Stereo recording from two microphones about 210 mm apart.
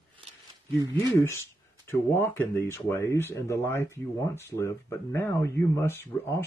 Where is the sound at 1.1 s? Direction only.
15° left (ahead or behind).